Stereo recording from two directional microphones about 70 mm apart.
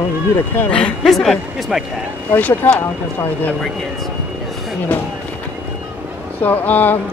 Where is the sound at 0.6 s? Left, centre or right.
Centre.